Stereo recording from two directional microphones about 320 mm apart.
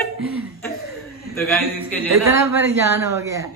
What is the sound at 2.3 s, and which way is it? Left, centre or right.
Speech, centre.